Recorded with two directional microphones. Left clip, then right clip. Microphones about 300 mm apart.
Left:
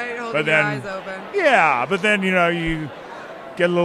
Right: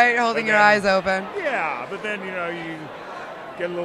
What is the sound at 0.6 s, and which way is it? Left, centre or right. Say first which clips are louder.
Speech: right 9 dB; right.